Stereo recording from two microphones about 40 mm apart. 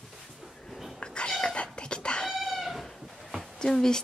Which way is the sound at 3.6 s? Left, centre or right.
Centre.